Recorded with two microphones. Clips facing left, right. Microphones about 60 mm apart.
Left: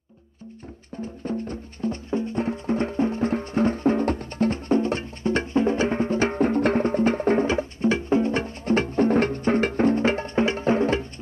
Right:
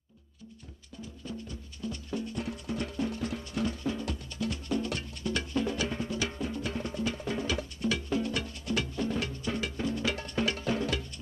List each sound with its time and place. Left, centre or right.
1.0 s music: left